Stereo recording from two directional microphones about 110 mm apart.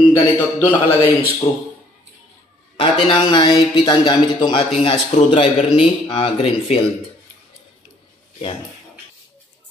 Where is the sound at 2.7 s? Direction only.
50° left (ahead or behind).